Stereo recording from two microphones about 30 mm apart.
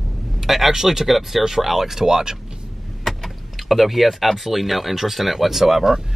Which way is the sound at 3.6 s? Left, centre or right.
Centre.